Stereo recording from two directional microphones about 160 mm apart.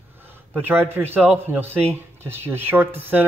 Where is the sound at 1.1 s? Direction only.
10° right (ahead or behind).